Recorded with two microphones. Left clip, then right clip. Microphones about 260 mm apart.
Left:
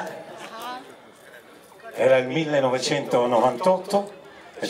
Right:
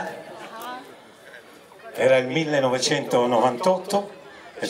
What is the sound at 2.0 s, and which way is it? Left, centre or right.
A man's voice, centre.